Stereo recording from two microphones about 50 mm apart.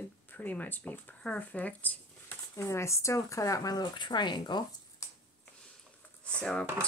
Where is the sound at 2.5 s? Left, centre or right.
Left.